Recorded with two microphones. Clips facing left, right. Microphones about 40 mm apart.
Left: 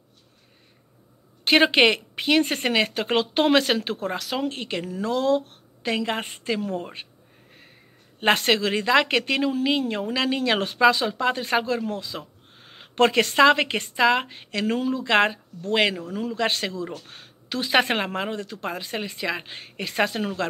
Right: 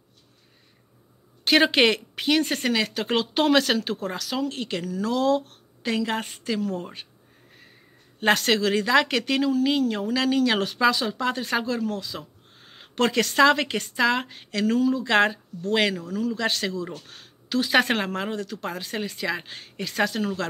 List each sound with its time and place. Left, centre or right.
1.4 s speech: centre
2.4 s speech: left
5.0 s speech: centre
8.2 s speech: left
12.9 s speech: left
15.0 s speech: centre